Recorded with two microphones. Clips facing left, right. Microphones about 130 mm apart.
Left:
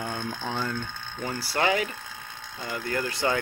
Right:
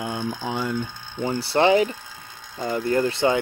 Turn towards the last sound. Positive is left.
turn(degrees=-25)  # may be behind; listen again after turning